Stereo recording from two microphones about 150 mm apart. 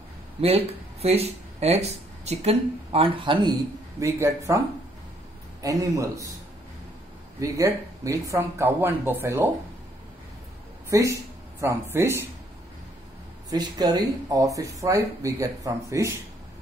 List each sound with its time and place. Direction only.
0.4 s speech: 45° right (ahead or behind)
4.0 s speech: 20° right (ahead or behind)
5.6 s speech: 20° right (ahead or behind)
7.3 s speech: 20° right (ahead or behind)
10.9 s speech: 20° right (ahead or behind)
13.5 s speech: 25° right (ahead or behind)